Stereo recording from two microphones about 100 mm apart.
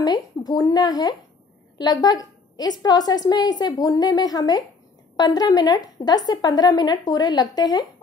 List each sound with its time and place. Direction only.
0.0 s a woman's voice: 45° left (ahead or behind)